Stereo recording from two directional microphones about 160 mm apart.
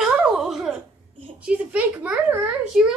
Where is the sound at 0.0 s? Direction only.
5° right (ahead or behind).